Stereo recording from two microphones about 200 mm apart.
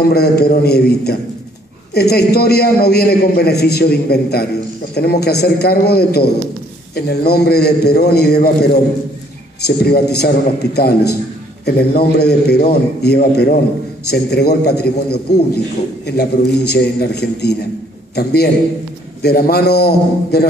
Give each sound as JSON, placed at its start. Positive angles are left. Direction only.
{"t": 0.0, "sound": "a man's voice", "side_deg": 50}
{"t": 9.7, "sound": "a man's voice", "side_deg": 50}